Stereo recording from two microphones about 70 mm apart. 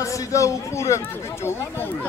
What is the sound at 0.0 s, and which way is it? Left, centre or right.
A man's voice, left.